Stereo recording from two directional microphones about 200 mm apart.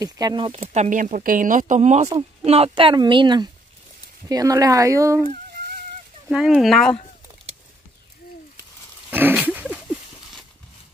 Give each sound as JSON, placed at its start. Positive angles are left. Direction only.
{"t": 0.0, "sound": "speech", "side_deg": -20}
{"t": 0.6, "sound": "speech", "side_deg": -40}
{"t": 6.2, "sound": "speech", "side_deg": -5}
{"t": 9.1, "sound": "a sound", "side_deg": -10}